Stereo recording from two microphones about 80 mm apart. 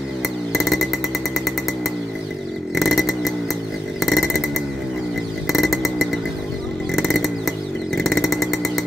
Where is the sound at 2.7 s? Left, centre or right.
Centre.